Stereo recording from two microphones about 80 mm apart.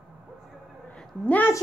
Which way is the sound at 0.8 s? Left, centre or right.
Centre.